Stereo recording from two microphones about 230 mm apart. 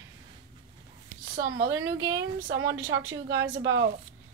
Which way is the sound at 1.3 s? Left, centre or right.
Right.